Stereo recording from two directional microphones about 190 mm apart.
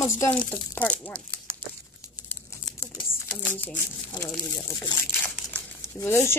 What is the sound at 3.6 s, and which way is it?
Speech, 10° left (ahead or behind).